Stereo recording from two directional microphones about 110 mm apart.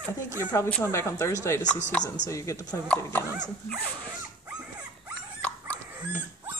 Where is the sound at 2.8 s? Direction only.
10° left (ahead or behind).